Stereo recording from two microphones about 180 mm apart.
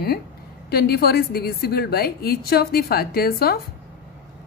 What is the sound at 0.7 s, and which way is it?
A woman's voice, 60° left (ahead or behind).